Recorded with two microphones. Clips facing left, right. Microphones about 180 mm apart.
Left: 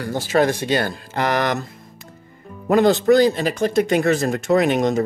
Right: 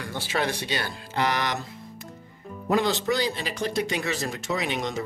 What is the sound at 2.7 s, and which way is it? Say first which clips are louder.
Speech: left 10 dB; 50° left (ahead or behind).